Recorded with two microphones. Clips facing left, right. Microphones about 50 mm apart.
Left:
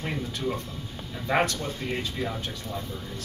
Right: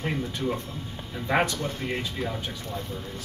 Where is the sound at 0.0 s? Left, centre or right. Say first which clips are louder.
Right 2 dB; centre.